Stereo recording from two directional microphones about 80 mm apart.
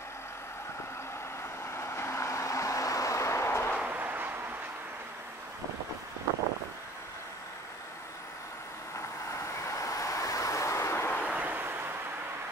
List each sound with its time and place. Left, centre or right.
1.7 s vehicle: left
3.8 s a sound: right
9.3 s vehicle: left
11.2 s waves: centre